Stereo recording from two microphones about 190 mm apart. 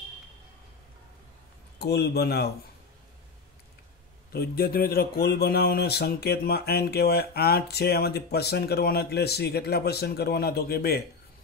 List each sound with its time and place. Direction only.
1.8 s speech: 60° left (ahead or behind)
4.3 s speech: 55° left (ahead or behind)